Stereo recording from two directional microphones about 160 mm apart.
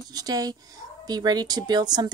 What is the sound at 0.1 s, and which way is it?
Speech, 25° right (ahead or behind).